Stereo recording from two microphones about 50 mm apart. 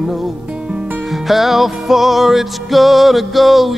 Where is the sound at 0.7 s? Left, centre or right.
Right.